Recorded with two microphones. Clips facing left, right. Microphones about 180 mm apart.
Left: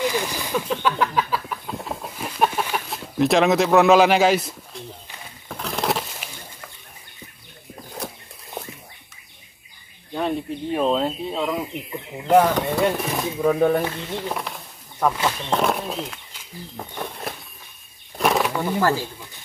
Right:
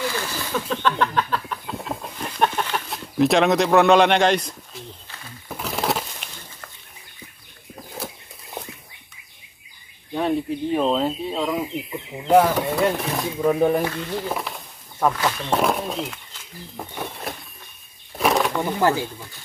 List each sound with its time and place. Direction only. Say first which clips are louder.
0.0 s a sound: left 3 dB; 15° left (ahead or behind)
10.1 s speech: right 2 dB; centre (ahead or behind)
13.5 s speech: even; 10° right (ahead or behind)
14.1 s a sound: right 1 dB; centre (ahead or behind)
15.5 s speech: right 1 dB; centre (ahead or behind)
18.1 s bird flight: even; centre (ahead or behind)
18.6 s speech: right 1 dB; 20° right (ahead or behind)